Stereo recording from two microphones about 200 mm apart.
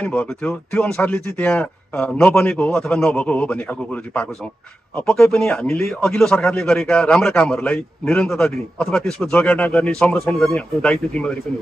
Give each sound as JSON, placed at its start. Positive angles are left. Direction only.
{"t": 0.0, "sound": "speech", "side_deg": 5}